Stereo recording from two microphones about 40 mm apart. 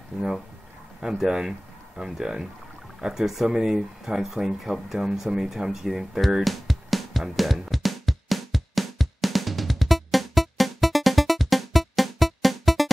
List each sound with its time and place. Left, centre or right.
1.0 s speech: centre
6.4 s music: centre